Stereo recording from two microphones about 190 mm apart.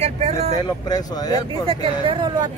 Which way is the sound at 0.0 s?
35° right (ahead or behind).